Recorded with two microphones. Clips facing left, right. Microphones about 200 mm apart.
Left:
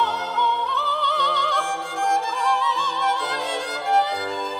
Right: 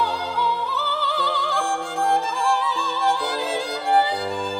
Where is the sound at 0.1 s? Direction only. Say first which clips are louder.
Right 1 dB; 30° right (ahead or behind).